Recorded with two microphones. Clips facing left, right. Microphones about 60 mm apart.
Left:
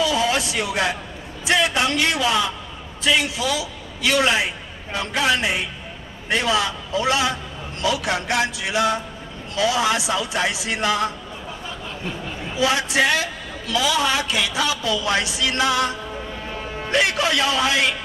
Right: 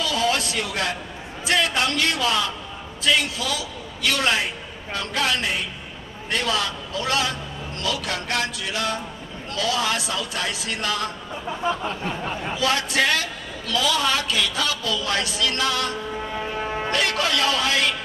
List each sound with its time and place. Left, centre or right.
0.0 s music: centre
1.4 s a man's voice: centre
12.5 s a man's voice: centre
16.9 s speech: centre